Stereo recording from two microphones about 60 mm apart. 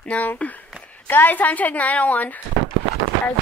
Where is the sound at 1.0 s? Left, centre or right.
Left.